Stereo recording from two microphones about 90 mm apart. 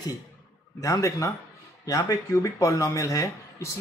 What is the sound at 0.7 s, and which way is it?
Speech, 40° left (ahead or behind).